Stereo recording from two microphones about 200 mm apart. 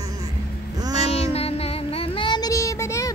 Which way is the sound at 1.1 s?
30° left (ahead or behind).